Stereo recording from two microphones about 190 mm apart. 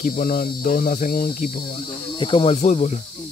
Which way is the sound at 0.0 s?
50° left (ahead or behind).